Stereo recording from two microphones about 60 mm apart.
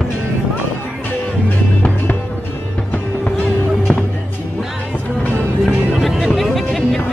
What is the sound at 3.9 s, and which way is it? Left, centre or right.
Music, left.